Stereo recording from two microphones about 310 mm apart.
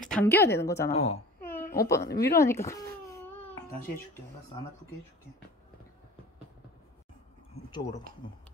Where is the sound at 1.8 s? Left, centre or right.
Centre.